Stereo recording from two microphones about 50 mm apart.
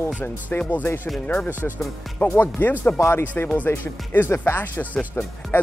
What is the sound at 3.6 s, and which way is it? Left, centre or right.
Speech, left.